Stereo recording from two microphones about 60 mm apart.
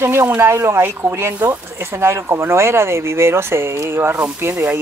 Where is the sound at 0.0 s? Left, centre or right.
Right.